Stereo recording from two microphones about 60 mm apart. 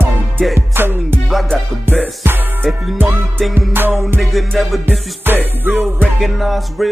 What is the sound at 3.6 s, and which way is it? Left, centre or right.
Music, right.